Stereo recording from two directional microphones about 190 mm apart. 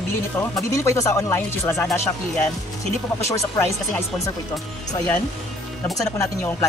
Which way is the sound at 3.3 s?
15° left (ahead or behind).